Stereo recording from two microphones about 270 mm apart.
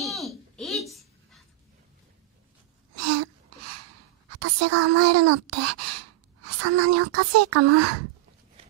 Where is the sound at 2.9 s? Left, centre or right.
Right.